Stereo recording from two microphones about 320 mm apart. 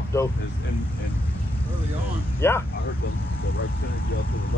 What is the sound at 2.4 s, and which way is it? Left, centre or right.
Speech, centre.